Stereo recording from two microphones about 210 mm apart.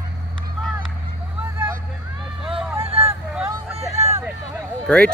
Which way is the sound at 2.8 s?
25° right (ahead or behind).